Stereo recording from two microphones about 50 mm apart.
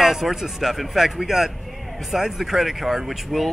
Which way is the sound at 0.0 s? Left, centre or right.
Centre.